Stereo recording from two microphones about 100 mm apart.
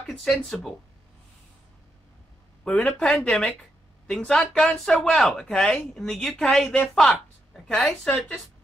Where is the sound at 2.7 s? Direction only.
10° left (ahead or behind).